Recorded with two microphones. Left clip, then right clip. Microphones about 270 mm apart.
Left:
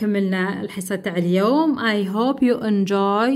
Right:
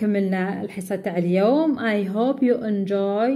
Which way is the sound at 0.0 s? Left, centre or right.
Centre.